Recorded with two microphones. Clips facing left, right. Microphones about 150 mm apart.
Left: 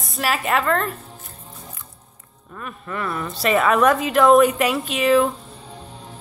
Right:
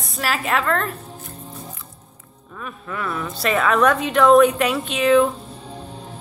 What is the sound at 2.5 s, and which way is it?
A woman's voice, centre (ahead or behind).